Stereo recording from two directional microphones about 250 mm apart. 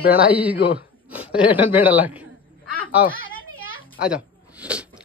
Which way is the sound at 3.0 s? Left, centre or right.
Left.